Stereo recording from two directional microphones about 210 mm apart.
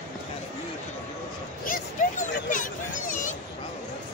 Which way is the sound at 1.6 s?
40° left (ahead or behind).